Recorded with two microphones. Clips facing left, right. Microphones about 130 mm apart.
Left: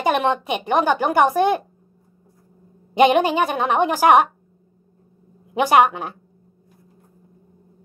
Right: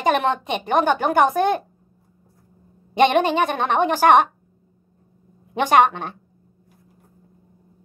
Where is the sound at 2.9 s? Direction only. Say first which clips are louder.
Left 1 dB; 5° left (ahead or behind).